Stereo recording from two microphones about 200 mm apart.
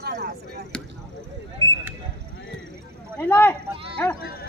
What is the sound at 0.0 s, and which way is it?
Basketball bounce, 55° right (ahead or behind).